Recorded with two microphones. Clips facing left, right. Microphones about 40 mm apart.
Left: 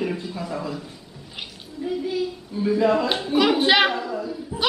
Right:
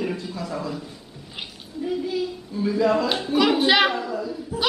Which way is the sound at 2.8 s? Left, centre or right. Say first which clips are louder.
Even; centre.